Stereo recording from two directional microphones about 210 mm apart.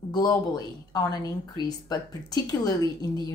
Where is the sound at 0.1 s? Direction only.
15° left (ahead or behind).